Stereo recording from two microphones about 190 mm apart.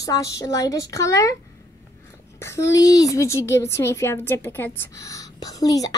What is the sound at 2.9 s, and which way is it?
A woman's voice, 20° left (ahead or behind).